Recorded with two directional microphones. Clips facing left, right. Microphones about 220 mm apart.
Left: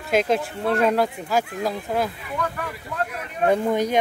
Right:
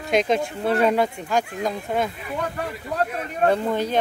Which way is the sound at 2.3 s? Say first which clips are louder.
Right 1 dB; 30° right (ahead or behind).